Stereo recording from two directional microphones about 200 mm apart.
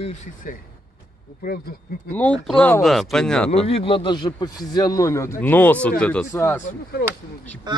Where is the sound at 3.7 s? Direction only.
25° left (ahead or behind).